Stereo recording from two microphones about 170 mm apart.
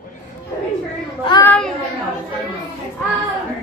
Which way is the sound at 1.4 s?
5° left (ahead or behind).